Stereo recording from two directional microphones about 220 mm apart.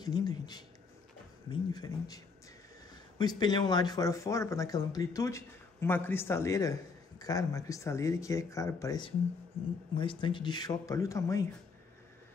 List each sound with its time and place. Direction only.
0.0 s speech: 20° left (ahead or behind)